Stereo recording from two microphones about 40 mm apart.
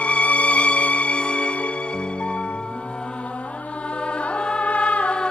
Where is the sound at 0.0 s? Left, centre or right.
Left.